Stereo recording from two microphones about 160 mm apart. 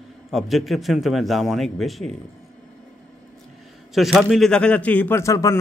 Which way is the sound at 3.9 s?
Centre (ahead or behind).